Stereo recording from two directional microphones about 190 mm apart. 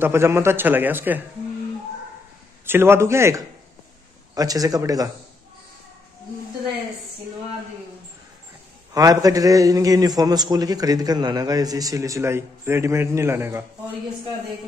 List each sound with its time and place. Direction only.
0.0 s a man's voice: 15° right (ahead or behind)
2.6 s a man's voice: 10° right (ahead or behind)
8.9 s a man's voice: 20° right (ahead or behind)